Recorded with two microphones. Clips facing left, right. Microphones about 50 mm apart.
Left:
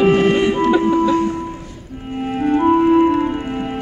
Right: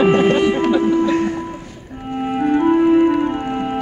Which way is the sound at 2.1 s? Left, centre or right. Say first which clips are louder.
Right 1 dB; centre.